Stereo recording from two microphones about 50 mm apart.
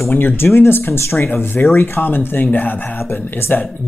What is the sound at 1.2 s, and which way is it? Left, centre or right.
Speech, left.